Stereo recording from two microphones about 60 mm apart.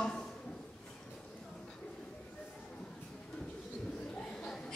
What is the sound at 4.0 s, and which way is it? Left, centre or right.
Bird, centre.